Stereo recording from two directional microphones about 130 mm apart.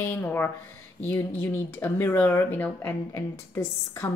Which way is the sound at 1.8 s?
15° left (ahead or behind).